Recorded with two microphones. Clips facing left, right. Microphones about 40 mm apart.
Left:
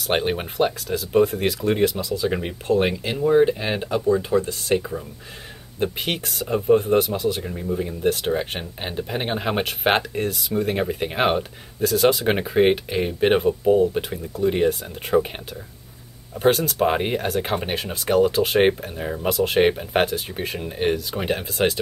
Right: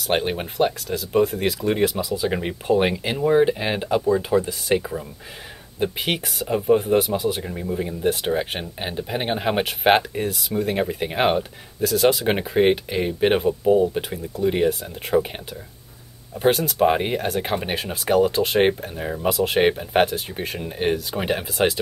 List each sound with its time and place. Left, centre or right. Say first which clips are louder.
0.0 s speech: even; centre
16.3 s speech: even; centre